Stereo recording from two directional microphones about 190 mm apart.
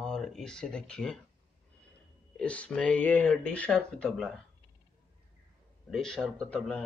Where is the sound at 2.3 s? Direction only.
5° left (ahead or behind).